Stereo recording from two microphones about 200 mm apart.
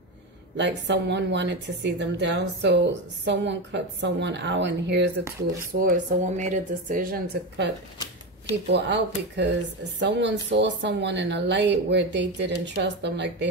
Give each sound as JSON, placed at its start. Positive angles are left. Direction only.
{"t": 0.6, "sound": "speech", "side_deg": -60}
{"t": 5.8, "sound": "a woman's voice", "side_deg": -40}